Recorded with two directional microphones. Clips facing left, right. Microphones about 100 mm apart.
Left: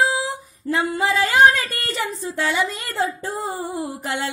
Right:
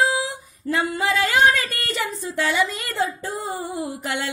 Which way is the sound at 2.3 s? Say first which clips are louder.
Even; 30° left (ahead or behind).